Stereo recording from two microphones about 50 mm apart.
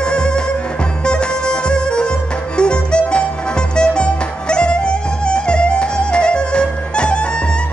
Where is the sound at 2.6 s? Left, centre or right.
Centre.